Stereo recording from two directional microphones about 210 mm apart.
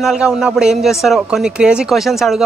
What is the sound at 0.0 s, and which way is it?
Speech, centre (ahead or behind).